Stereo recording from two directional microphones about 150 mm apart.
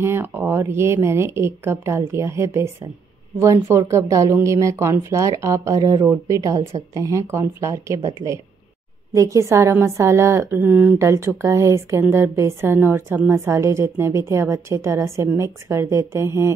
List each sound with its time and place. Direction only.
0.0 s a woman's voice: 15° right (ahead or behind)